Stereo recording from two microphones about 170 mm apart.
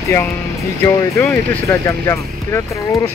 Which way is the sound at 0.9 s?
10° left (ahead or behind).